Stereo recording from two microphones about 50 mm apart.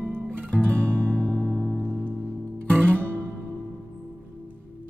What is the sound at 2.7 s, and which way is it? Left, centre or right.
Music, right.